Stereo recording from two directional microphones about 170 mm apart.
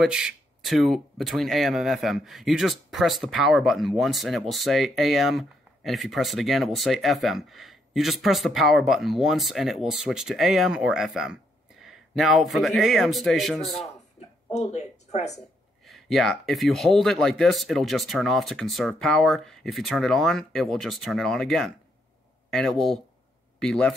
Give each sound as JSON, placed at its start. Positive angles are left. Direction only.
{"t": 0.0, "sound": "speech", "side_deg": -5}
{"t": 14.5, "sound": "speech", "side_deg": 40}
{"t": 15.8, "sound": "speech", "side_deg": 0}